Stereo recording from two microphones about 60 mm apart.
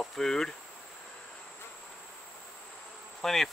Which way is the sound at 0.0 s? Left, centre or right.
Centre.